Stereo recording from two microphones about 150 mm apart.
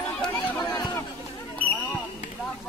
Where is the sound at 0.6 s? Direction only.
30° left (ahead or behind).